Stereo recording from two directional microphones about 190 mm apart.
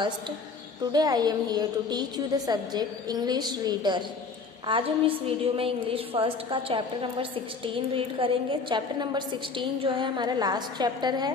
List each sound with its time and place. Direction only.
0.9 s a woman's voice: 20° right (ahead or behind)